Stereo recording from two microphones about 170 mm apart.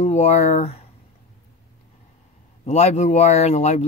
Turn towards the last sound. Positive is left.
turn(degrees=40)  # may be behind; listen again after turning